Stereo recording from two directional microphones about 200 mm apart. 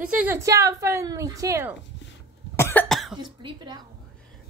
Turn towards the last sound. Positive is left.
turn(degrees=-25)  # may be behind; listen again after turning